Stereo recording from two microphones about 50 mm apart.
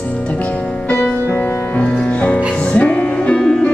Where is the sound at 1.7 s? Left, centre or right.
Left.